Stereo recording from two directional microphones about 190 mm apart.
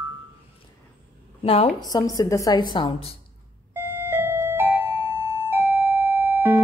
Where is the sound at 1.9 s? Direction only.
20° left (ahead or behind).